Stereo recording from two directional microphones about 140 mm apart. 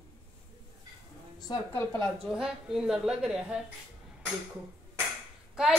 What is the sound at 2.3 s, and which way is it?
A woman's voice, 5° right (ahead or behind).